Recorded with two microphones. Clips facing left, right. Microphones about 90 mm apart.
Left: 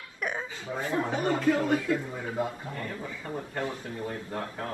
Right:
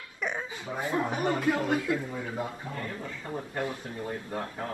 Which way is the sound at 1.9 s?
25° left (ahead or behind).